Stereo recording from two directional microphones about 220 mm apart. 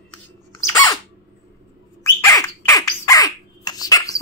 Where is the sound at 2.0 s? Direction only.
15° left (ahead or behind).